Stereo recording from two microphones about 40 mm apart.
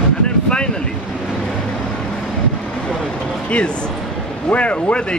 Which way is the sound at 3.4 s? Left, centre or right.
Left.